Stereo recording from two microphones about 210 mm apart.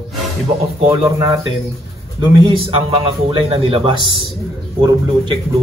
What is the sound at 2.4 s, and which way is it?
A man's voice, 25° right (ahead or behind).